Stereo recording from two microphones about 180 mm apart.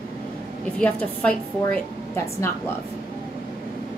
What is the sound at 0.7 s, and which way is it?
A woman's voice, 5° left (ahead or behind).